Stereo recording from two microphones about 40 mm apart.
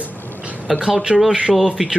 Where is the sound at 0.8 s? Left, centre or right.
Centre.